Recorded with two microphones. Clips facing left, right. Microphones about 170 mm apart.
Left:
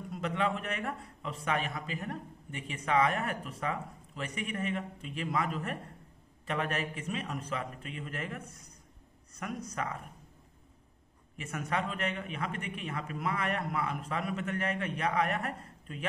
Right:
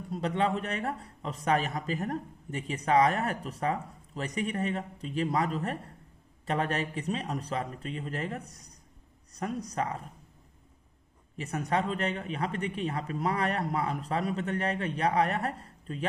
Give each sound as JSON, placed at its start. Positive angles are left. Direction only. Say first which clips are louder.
{"t": 0.1, "sound": "a man's voice", "louder": "right 4 dB", "side_deg": -35}
{"t": 11.3, "sound": "a man's voice", "louder": "right 4 dB", "side_deg": -35}